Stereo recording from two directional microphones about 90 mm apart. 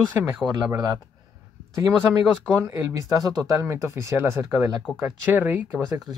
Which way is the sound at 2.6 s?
40° right (ahead or behind).